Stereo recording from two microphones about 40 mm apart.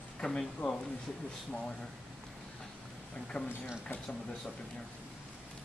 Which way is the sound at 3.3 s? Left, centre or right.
Left.